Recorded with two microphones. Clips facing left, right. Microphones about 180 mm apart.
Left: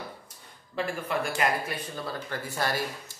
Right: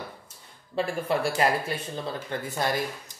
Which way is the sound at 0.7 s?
30° right (ahead or behind).